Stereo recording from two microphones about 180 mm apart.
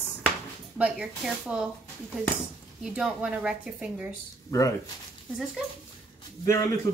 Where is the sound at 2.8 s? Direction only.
5° right (ahead or behind).